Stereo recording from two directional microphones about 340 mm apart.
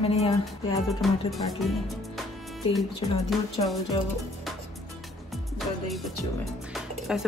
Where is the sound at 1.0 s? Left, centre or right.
Centre.